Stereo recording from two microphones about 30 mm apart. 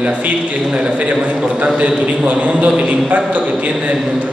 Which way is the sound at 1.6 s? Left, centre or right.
Right.